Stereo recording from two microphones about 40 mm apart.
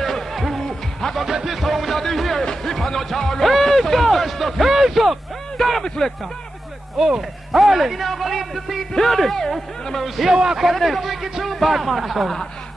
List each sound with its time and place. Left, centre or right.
0.0 s music: centre
1.1 s speech: centre
2.6 s music: centre
3.4 s speech: centre
7.0 s a man's voice: centre
8.9 s a man's voice: centre
10.3 s a man's voice: centre
10.6 s a man's voice: centre